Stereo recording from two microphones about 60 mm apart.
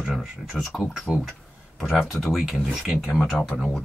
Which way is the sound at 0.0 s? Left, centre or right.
Centre.